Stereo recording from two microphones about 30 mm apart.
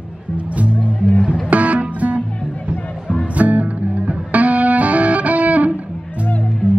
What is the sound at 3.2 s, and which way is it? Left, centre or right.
Music, right.